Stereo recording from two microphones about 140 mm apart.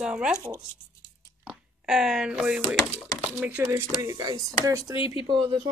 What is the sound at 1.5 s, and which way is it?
A woman's voice, centre (ahead or behind).